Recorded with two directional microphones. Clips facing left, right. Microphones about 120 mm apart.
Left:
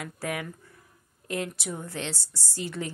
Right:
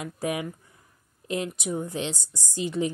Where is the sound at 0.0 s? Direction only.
20° right (ahead or behind).